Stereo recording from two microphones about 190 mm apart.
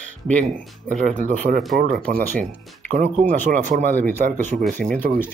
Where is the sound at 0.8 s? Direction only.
45° right (ahead or behind).